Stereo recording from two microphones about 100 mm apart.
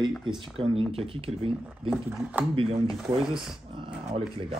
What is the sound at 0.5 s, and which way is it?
Speech, 75° right (ahead or behind).